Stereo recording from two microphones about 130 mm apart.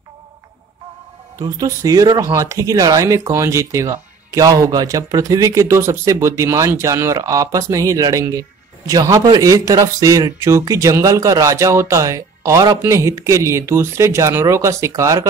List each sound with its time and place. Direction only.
1.4 s speech: 25° right (ahead or behind)